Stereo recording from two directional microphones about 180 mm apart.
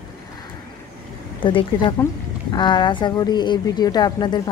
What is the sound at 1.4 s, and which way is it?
A woman's voice, 30° left (ahead or behind).